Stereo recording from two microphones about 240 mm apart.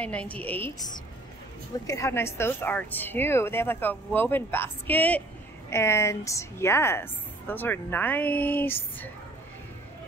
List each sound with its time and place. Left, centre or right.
0.0 s a woman's voice: centre